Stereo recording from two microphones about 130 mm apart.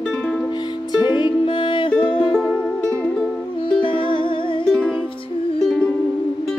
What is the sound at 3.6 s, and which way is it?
Music, 40° left (ahead or behind).